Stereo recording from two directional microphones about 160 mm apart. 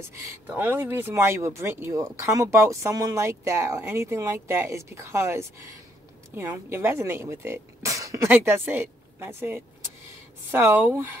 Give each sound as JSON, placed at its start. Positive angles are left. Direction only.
{"t": 0.0, "sound": "speech", "side_deg": -15}